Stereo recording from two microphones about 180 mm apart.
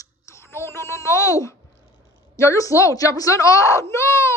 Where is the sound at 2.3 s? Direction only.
15° left (ahead or behind).